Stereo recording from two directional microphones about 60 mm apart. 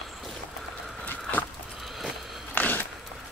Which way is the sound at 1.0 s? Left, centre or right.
Left.